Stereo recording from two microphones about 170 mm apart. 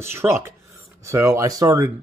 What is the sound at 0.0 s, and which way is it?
Speech, 15° right (ahead or behind).